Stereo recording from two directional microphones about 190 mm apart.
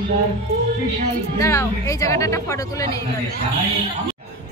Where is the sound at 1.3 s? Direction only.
15° left (ahead or behind).